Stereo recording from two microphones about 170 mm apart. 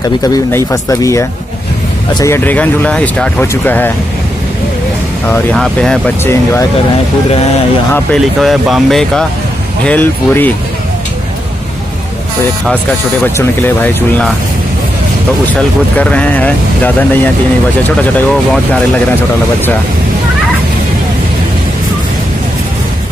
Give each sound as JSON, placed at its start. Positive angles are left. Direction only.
{"t": 0.3, "sound": "speech", "side_deg": 15}
{"t": 5.3, "sound": "speech", "side_deg": 5}
{"t": 7.9, "sound": "speech", "side_deg": 5}
{"t": 13.2, "sound": "speech", "side_deg": 10}
{"t": 16.0, "sound": "speech", "side_deg": 10}